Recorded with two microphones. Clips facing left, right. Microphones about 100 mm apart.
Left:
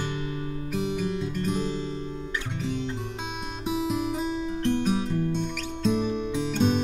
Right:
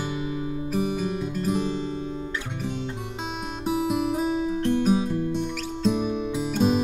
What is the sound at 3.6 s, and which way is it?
Music, 5° right (ahead or behind).